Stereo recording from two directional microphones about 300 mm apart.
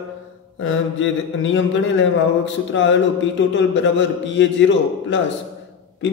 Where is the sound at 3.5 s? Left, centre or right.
Left.